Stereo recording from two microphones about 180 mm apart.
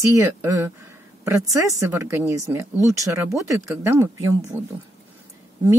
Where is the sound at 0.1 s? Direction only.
15° right (ahead or behind).